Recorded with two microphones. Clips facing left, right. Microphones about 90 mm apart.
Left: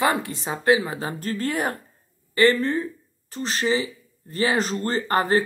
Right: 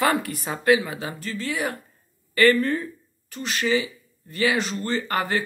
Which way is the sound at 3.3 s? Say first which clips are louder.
Even; 35° left (ahead or behind).